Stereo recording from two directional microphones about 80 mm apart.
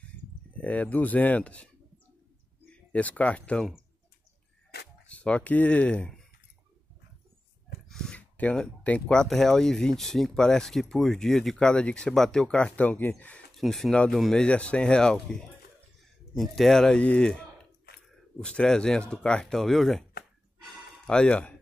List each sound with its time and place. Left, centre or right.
0.5 s speech: centre
2.7 s speech: centre
5.0 s speech: centre
7.9 s a sound: centre
8.2 s a sound: centre
8.8 s speech: centre
13.6 s speech: centre
14.4 s speech: centre
16.3 s speech: centre
21.1 s speech: centre